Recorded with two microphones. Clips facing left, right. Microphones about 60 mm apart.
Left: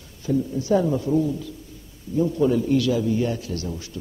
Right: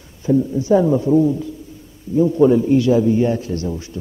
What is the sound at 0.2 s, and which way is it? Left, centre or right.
A man's voice, right.